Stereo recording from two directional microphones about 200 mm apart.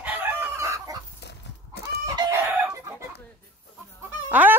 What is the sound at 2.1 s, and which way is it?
Chicken, 15° right (ahead or behind).